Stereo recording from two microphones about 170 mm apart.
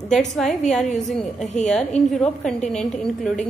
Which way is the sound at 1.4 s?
45° left (ahead or behind).